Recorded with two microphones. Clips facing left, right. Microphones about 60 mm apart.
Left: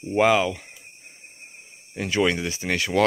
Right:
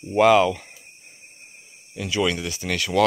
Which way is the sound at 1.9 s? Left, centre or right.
Left.